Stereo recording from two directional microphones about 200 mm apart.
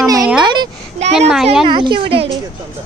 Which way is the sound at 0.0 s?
15° right (ahead or behind).